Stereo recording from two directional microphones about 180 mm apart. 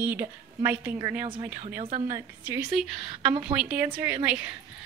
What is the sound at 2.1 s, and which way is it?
Speech, 15° right (ahead or behind).